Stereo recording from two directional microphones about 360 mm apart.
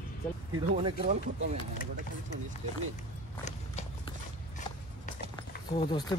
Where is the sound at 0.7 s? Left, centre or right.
Centre.